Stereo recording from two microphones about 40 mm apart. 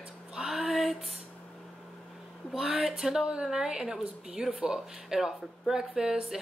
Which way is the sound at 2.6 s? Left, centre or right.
Centre.